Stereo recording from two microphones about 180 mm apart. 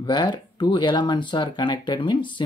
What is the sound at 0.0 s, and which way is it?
Speech, 25° left (ahead or behind).